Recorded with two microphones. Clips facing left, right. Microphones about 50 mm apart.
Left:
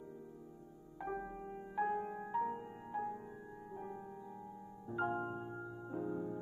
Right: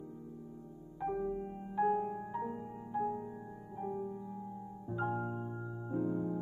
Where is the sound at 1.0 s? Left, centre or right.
Left.